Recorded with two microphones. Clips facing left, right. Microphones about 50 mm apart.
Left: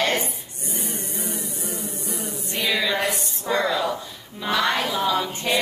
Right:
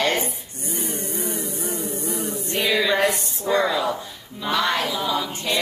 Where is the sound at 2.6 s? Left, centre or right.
Centre.